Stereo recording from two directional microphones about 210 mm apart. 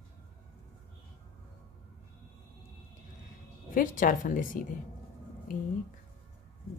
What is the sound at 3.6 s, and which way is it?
Speech, 40° left (ahead or behind).